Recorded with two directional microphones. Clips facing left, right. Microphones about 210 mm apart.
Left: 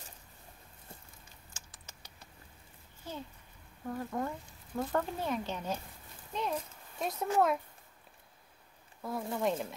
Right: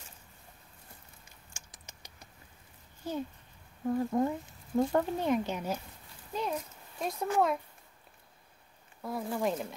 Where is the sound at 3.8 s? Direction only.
20° right (ahead or behind).